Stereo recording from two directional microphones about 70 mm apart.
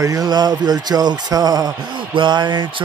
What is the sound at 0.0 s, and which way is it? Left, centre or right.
Speech, right.